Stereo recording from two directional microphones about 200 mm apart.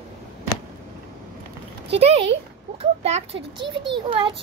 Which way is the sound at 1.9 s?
30° right (ahead or behind).